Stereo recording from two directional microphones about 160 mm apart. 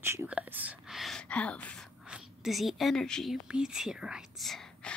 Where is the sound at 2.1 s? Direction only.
5° right (ahead or behind).